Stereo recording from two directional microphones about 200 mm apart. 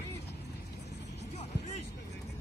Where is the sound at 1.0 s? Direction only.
60° left (ahead or behind).